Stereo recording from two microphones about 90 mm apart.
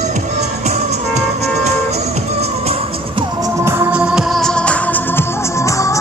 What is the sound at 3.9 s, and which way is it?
Music, 10° right (ahead or behind).